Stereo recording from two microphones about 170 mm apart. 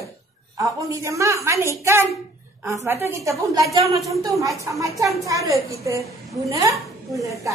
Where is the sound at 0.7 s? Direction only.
20° right (ahead or behind).